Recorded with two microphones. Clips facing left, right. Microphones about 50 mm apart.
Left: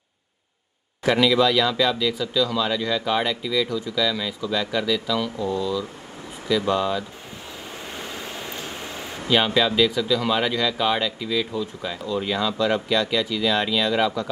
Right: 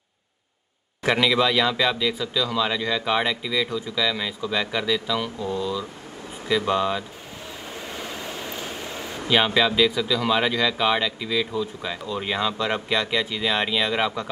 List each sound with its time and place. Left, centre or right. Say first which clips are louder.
1.0 s speech: left 2 dB; right
9.3 s speech: even; centre
12.1 s speech: left 2 dB; right